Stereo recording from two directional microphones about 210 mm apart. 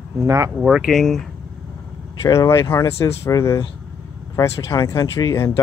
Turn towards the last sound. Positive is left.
turn(degrees=15)  # may be behind; listen again after turning